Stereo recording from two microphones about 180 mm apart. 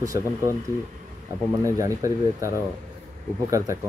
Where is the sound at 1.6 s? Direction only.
15° right (ahead or behind).